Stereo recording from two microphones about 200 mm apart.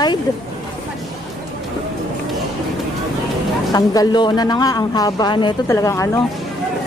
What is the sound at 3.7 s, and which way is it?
A man's voice, 20° left (ahead or behind).